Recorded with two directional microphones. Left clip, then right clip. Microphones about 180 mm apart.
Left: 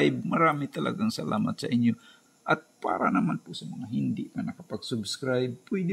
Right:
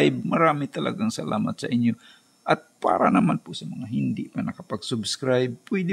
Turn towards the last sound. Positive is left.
turn(degrees=-30)  # may be behind; listen again after turning